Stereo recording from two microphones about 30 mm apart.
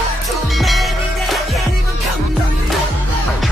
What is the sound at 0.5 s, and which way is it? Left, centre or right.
Music, centre.